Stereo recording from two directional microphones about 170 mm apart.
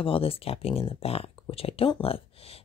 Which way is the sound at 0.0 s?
35° left (ahead or behind).